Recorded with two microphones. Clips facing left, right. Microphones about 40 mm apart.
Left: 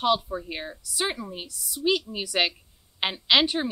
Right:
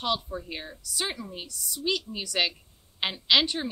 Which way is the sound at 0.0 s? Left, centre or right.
Centre.